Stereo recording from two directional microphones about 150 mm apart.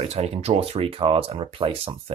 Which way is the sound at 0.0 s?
45° right (ahead or behind).